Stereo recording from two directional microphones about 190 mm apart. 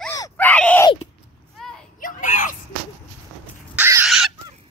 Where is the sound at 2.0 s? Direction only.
45° left (ahead or behind).